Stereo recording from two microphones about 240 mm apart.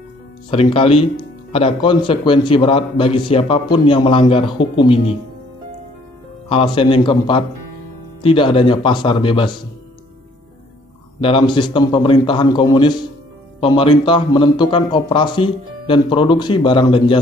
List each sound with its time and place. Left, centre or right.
0.5 s speech: left
6.5 s speech: left
11.1 s speech: left